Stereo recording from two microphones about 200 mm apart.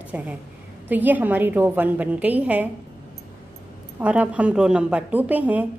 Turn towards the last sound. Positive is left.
turn(degrees=-10)  # may be behind; listen again after turning